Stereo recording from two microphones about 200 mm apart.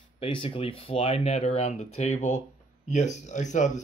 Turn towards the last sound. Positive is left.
turn(degrees=35)  # may be behind; listen again after turning